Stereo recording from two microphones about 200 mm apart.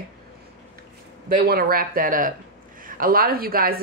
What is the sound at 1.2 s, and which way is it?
Speech, 45° right (ahead or behind).